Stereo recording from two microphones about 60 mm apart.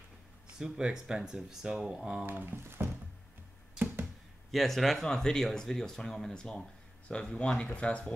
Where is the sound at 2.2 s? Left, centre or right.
Right.